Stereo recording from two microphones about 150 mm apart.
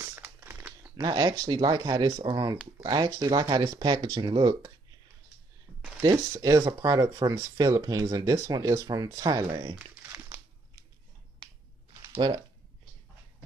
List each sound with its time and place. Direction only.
0.0 s crumpling: 15° right (ahead or behind)
1.0 s speech: 25° right (ahead or behind)
6.0 s speech: 20° right (ahead or behind)